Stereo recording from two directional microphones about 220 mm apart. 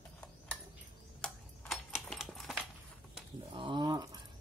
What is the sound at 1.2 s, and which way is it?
Typewriter, 5° left (ahead or behind).